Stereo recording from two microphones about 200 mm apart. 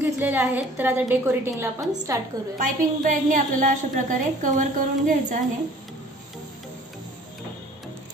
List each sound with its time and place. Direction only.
0.0 s a woman's voice: 10° right (ahead or behind)
2.6 s a woman's voice: 40° right (ahead or behind)